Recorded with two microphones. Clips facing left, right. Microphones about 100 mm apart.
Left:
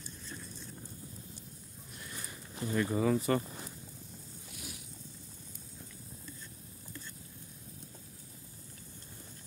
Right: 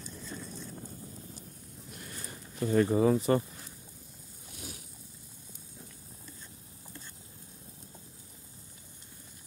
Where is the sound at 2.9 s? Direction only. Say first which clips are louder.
Right 4 dB; 25° right (ahead or behind).